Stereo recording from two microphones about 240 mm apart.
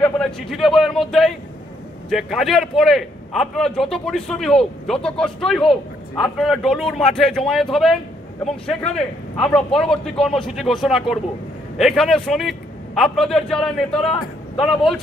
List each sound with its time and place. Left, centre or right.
0.0 s a man's voice: centre